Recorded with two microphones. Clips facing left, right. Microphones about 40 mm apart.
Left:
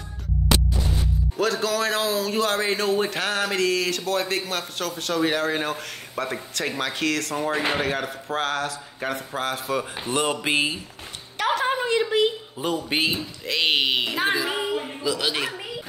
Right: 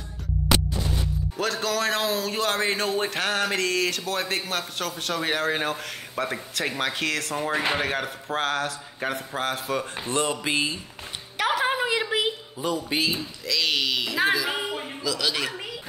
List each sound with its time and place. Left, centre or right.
1.3 s a man's voice: centre
10.1 s speech: left
11.3 s a sound: centre
12.5 s speech: left
14.5 s speech: centre
15.0 s speech: left